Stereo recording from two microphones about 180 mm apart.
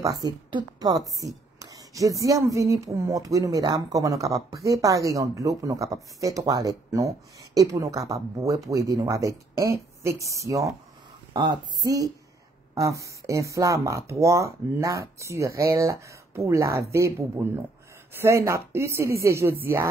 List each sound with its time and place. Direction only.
0.0 s speech: 20° right (ahead or behind)